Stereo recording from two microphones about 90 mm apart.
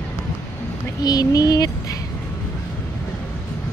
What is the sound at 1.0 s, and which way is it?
Speech, 45° left (ahead or behind).